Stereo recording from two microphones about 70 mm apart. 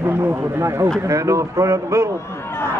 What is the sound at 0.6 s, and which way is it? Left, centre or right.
Speech, right.